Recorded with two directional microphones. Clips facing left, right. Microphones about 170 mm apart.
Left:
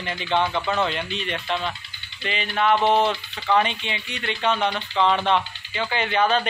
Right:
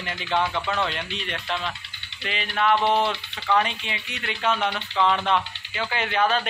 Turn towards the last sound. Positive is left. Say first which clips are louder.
# left 2 dB
turn(degrees=0)  # may be behind; listen again after turning